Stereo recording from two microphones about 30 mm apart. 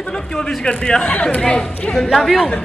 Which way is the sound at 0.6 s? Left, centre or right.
Left.